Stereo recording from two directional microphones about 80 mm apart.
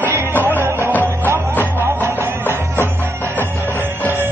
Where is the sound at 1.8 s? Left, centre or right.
Right.